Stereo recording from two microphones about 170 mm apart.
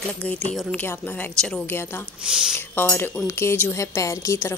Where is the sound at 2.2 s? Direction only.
5° right (ahead or behind).